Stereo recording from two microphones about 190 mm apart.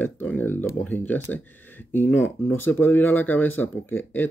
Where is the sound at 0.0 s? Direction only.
10° left (ahead or behind).